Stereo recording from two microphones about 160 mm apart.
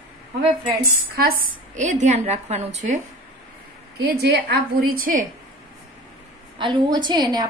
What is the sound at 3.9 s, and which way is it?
Speech, 80° right.